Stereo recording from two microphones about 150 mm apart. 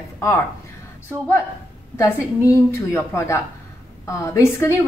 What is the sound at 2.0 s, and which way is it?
A woman's voice, 20° left (ahead or behind).